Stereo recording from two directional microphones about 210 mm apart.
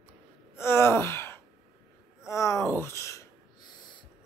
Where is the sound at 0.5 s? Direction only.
10° left (ahead or behind).